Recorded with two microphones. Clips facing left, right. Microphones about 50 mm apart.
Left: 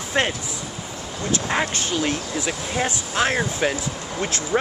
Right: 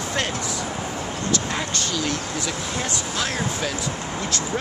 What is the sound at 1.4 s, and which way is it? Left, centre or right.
Speech, left.